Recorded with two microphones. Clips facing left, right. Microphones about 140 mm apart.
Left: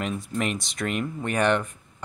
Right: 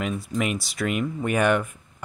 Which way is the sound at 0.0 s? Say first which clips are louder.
Right 1 dB; centre (ahead or behind).